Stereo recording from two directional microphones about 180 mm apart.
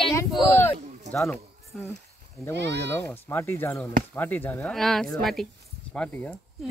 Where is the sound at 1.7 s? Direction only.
Centre (ahead or behind).